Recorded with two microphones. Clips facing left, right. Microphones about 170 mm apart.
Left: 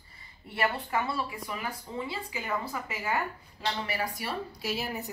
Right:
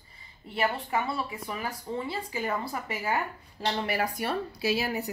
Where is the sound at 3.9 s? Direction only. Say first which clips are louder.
Right 4 dB; 60° right (ahead or behind).